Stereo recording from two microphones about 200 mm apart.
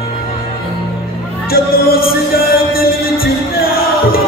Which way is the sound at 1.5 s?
50° left (ahead or behind).